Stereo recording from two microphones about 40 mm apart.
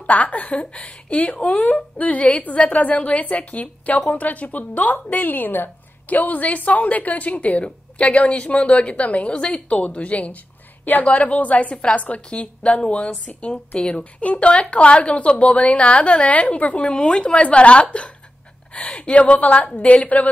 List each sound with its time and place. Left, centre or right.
0.0 s a woman's voice: left
12.3 s a woman's voice: left
16.8 s a woman's voice: left